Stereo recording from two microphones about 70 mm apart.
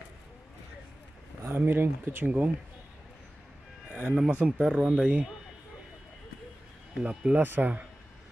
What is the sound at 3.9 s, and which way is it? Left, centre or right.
Speech, centre.